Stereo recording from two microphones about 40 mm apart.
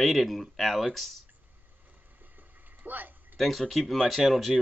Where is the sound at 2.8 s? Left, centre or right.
Right.